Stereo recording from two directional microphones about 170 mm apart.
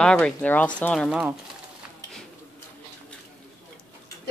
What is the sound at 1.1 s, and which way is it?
Speech, 5° right (ahead or behind).